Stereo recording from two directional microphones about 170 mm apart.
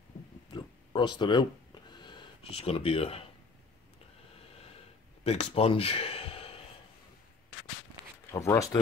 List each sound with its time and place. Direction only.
0.5 s a sound: 25° left (ahead or behind)
5.2 s speech: 35° left (ahead or behind)
8.3 s speech: 15° left (ahead or behind)